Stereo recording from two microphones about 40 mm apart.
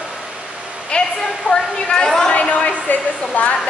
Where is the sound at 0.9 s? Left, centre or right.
Left.